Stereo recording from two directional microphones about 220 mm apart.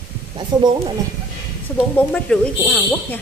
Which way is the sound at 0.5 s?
20° right (ahead or behind).